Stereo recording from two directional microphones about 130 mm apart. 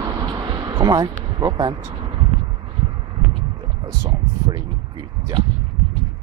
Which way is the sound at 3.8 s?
30° right (ahead or behind).